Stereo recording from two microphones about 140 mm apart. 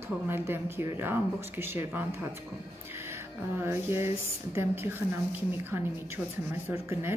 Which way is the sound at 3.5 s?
15° right (ahead or behind).